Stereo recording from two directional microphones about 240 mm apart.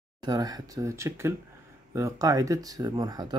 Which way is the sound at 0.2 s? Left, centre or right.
Centre.